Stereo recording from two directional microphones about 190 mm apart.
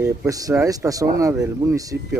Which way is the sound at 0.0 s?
15° right (ahead or behind).